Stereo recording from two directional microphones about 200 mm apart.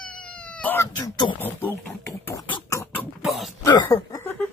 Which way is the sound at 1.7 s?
10° left (ahead or behind).